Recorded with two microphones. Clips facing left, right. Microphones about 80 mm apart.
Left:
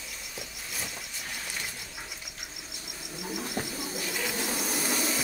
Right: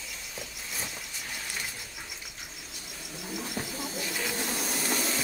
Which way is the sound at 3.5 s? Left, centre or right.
Centre.